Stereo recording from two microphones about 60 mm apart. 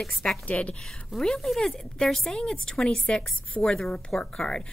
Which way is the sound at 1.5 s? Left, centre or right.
Centre.